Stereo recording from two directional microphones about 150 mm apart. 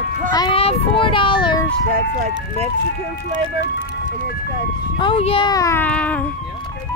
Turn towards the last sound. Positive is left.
turn(degrees=10)  # may be behind; listen again after turning